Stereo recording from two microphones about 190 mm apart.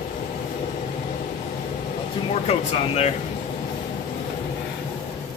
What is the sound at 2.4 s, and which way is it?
Speech, 35° left (ahead or behind).